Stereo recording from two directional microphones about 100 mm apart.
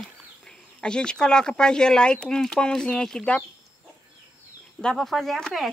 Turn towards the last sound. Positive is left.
turn(degrees=5)  # may be behind; listen again after turning